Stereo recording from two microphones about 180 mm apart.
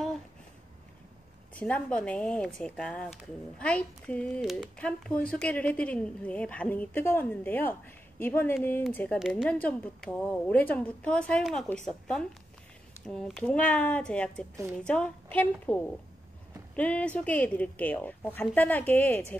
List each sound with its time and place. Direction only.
1.5 s speech: 10° left (ahead or behind)
9.2 s a woman's voice: centre (ahead or behind)